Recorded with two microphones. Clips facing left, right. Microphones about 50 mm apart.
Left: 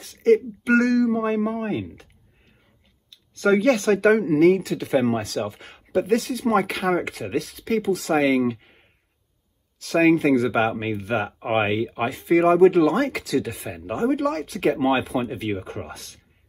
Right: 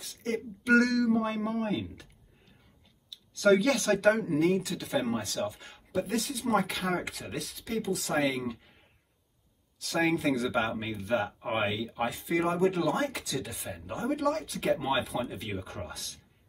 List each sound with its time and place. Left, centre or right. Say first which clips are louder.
0.0 s a sound: left 16 dB; left
0.7 s speech: left 5 dB; left
4.1 s speech: left 10 dB; left
6.9 s speech: left 9 dB; left
14.0 s speech: left 6 dB; left